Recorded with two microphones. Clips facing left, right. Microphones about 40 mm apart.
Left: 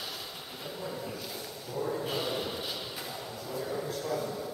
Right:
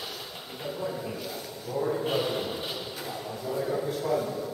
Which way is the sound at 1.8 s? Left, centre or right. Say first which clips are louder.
Right 5 dB; centre.